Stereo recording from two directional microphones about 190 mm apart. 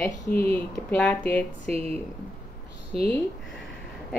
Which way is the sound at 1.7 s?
35° right (ahead or behind).